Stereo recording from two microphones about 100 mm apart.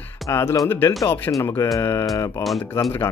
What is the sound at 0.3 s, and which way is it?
Speech, 30° left (ahead or behind).